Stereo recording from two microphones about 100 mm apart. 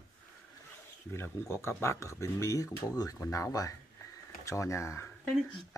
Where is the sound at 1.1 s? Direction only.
25° left (ahead or behind).